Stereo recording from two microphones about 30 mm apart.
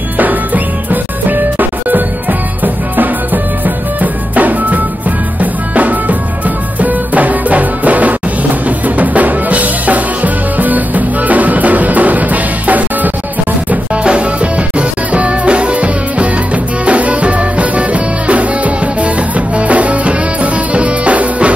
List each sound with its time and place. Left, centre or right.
1.3 s music: right
3.6 s music: right
8.6 s drum: right
14.0 s music: right